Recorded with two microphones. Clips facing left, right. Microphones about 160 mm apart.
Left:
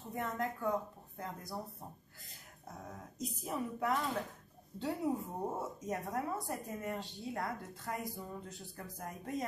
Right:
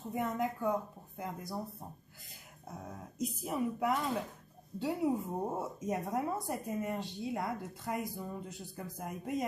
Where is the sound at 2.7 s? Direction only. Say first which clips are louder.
Right 2 dB; centre (ahead or behind).